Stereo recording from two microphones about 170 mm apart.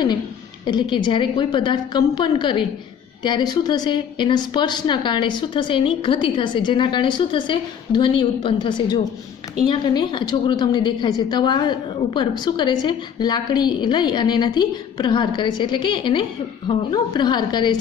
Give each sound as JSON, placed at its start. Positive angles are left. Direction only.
{"t": 0.7, "sound": "a woman's voice", "side_deg": 25}